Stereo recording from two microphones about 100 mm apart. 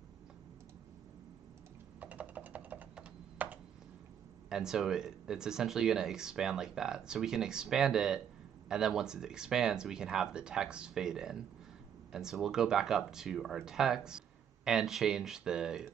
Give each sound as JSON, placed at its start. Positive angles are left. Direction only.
{"t": 2.0, "sound": "typing", "side_deg": -15}
{"t": 4.5, "sound": "speech", "side_deg": -5}